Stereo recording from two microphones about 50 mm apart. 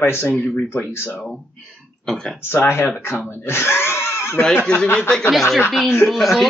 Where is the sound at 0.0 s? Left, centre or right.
Left.